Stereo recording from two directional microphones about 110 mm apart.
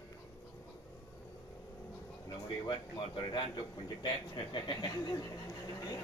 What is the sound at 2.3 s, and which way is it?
Speech, 45° left (ahead or behind).